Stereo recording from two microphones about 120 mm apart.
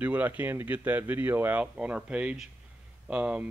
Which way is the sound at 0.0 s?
15° right (ahead or behind).